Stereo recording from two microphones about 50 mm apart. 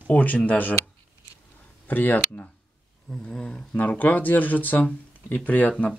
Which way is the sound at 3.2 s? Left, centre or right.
Centre.